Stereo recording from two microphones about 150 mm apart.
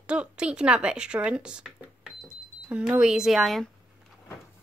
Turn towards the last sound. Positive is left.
turn(degrees=0)  # may be behind; listen again after turning